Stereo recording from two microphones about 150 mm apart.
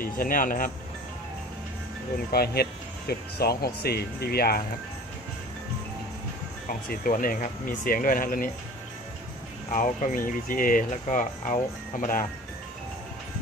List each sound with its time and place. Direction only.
0.0 s speech: 70° left (ahead or behind)
2.3 s speech: 90° left
6.7 s speech: 70° left (ahead or behind)
9.7 s speech: 55° left (ahead or behind)